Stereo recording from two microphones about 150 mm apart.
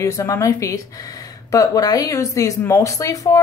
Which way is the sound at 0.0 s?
20° left (ahead or behind).